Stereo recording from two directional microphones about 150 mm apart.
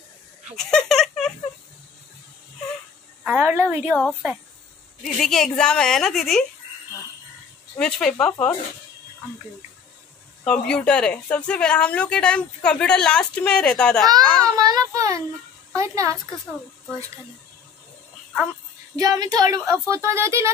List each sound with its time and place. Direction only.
0.6 s a sound: 5° left (ahead or behind)
3.3 s a sound: 15° right (ahead or behind)
3.9 s a woman's voice: 10° left (ahead or behind)
7.7 s a woman's voice: 5° left (ahead or behind)
10.4 s a woman's voice: 5° left (ahead or behind)
14.6 s a child's voice: 25° right (ahead or behind)
18.9 s a woman's voice: 25° right (ahead or behind)